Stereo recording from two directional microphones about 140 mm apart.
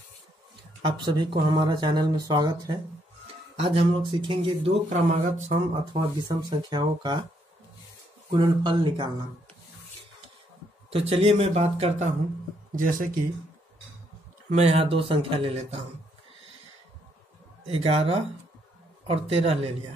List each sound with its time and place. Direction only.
0.8 s speech: 30° right (ahead or behind)
3.5 s speech: 40° right (ahead or behind)
4.8 s speech: 50° right (ahead or behind)
6.7 s speech: 30° right (ahead or behind)
8.3 s speech: 35° right (ahead or behind)
10.9 s speech: 45° right (ahead or behind)
12.7 s speech: 75° right (ahead or behind)
14.5 s speech: 50° right (ahead or behind)
17.6 s speech: 45° right (ahead or behind)